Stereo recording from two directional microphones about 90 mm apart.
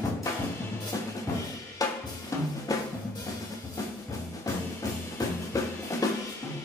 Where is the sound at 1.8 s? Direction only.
40° left (ahead or behind).